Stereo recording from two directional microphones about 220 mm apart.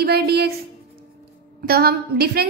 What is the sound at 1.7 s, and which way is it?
Speech, 45° right (ahead or behind).